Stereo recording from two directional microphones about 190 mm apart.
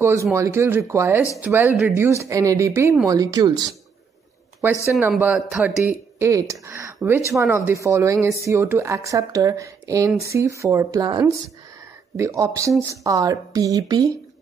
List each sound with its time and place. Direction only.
0.0 s speech: 15° right (ahead or behind)